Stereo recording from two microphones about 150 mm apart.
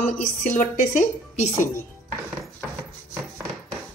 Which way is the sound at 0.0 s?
60° left (ahead or behind).